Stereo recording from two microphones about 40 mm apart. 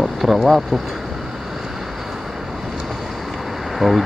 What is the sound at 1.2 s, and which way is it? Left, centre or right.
Vehicle, centre.